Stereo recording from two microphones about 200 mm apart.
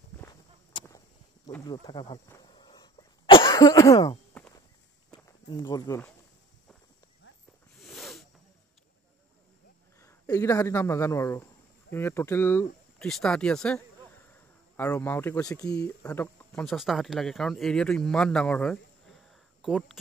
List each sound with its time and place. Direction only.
0.2 s walk: 15° left (ahead or behind)
1.5 s a sound: 20° left (ahead or behind)
4.3 s walk: 10° left (ahead or behind)
5.1 s speech: 20° left (ahead or behind)
7.8 s snake: centre (ahead or behind)
9.9 s speech: 15° left (ahead or behind)
16.6 s speech: centre (ahead or behind)